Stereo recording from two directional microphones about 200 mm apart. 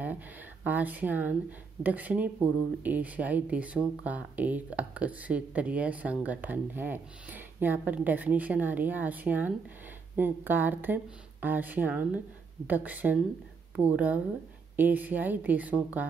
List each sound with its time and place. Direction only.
0.7 s speech: 10° right (ahead or behind)